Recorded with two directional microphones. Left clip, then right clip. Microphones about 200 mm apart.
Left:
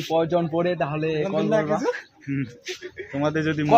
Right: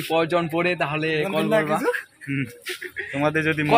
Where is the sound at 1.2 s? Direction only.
10° left (ahead or behind).